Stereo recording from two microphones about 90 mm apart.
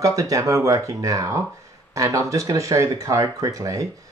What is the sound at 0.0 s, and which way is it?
Speech, 40° right (ahead or behind).